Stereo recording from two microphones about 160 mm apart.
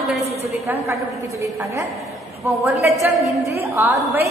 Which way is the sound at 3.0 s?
Centre (ahead or behind).